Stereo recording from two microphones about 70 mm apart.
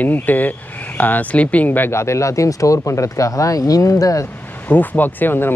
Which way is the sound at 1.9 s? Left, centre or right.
Left.